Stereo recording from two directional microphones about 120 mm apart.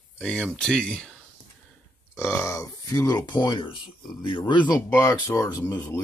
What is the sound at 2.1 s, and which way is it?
Speech, 25° left (ahead or behind).